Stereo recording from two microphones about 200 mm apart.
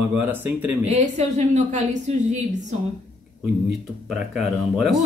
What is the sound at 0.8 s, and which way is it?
Speech, 35° right (ahead or behind).